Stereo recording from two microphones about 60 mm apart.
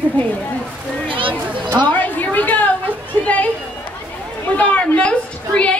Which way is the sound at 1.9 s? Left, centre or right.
Left.